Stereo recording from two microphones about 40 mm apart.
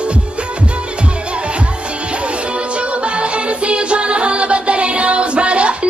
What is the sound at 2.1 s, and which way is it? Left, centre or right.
Music, right.